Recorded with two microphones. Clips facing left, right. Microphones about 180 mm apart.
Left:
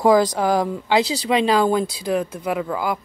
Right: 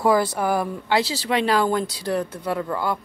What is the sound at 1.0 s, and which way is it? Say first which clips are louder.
Speech: left 4 dB; 15° left (ahead or behind).